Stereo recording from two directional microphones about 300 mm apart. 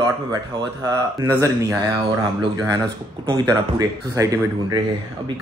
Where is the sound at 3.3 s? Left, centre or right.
Centre.